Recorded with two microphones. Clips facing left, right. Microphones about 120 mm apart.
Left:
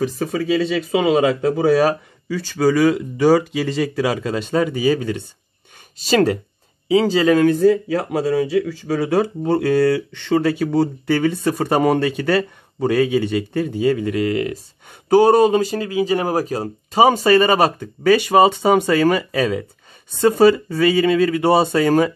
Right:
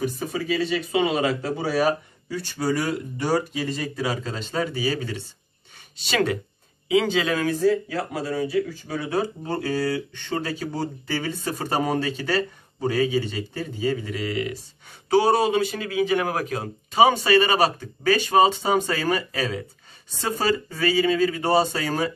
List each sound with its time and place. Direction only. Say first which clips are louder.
0.0 s speech: left 6 dB; 90° left
1.6 s speech: left 7 dB; 80° left; by 5.2 s 55° left (ahead or behind)
6.0 s speech: left 7 dB; 40° left (ahead or behind)
7.4 s speech: left 7 dB; 65° left (ahead or behind)